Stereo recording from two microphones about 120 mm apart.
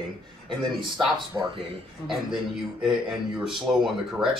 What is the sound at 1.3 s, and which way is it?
Speech, 15° right (ahead or behind).